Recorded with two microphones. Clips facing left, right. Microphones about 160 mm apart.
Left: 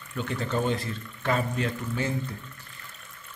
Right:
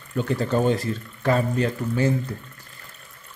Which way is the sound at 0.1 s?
40° right (ahead or behind).